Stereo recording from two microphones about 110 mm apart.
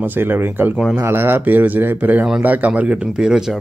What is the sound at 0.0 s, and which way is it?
Speech, 20° right (ahead or behind).